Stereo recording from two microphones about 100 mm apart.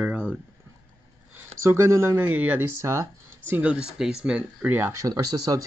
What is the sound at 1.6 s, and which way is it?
Speech, 30° right (ahead or behind).